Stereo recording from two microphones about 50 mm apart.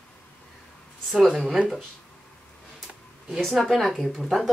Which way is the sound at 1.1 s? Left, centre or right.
Centre.